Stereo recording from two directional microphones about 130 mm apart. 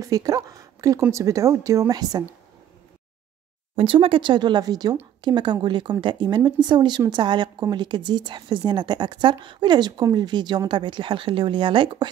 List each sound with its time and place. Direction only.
0.0 s speech: 25° right (ahead or behind)
3.7 s a woman's voice: 45° right (ahead or behind)